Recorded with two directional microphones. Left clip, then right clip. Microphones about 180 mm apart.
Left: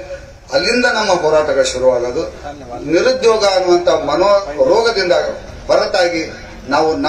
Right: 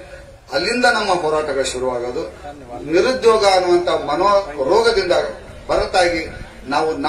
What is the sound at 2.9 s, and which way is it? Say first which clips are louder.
A man's voice: left 2 dB; 15° left (ahead or behind).